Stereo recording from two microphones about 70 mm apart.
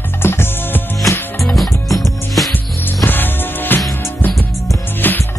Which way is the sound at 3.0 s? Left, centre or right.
Left.